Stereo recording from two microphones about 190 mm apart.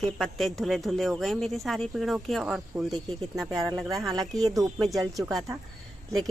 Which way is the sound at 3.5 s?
15° right (ahead or behind).